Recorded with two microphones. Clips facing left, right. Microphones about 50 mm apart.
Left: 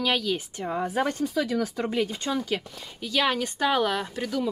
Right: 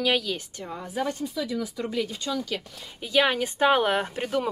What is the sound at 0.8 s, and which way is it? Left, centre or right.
Speech, left.